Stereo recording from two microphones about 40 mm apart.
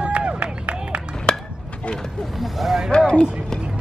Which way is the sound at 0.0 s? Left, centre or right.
Right.